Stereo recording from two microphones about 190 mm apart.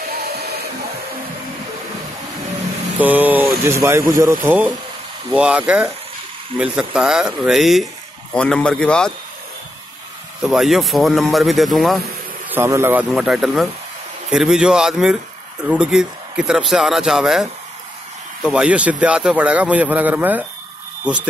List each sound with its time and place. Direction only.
0.1 s music: 55° right (ahead or behind)
3.0 s a man's voice: 10° right (ahead or behind)
10.4 s speech: centre (ahead or behind)
12.4 s speech: 15° right (ahead or behind)
13.1 s a man's voice: centre (ahead or behind)